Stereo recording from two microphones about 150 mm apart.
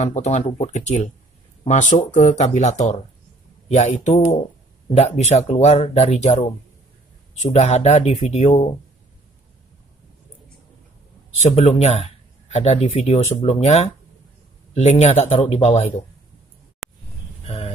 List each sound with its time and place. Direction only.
0.0 s speech: 50° left (ahead or behind)
7.5 s speech: 50° left (ahead or behind)
11.4 s speech: 45° left (ahead or behind)
16.8 s a sound: centre (ahead or behind)